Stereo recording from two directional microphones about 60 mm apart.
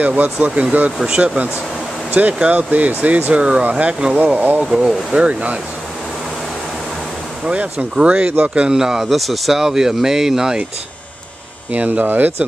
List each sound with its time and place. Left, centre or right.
0.0 s speech: right
4.2 s speech: right
4.6 s speech: centre
7.4 s speech: centre
8.6 s speech: centre
11.7 s speech: right